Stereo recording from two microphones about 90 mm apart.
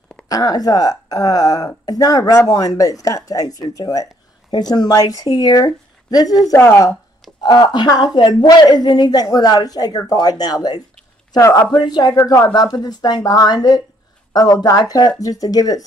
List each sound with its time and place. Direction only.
0.3 s speech: 45° left (ahead or behind)
7.4 s speech: 50° left (ahead or behind)